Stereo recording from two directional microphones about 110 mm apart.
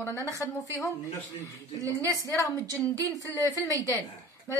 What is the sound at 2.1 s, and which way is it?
Speech, 30° left (ahead or behind).